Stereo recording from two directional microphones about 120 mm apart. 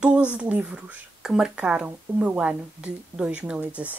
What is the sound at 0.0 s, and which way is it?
A woman's voice, 10° right (ahead or behind).